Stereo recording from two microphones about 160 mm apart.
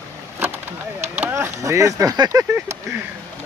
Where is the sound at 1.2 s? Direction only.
15° right (ahead or behind).